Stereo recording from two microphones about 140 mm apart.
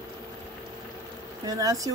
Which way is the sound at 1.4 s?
25° right (ahead or behind).